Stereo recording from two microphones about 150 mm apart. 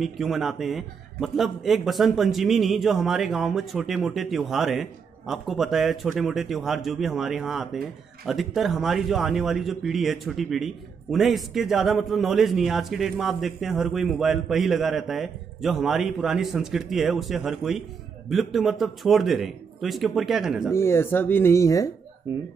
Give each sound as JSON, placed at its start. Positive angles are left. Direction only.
{"t": 0.0, "sound": "a man's voice", "side_deg": 0}
{"t": 20.7, "sound": "speech", "side_deg": 15}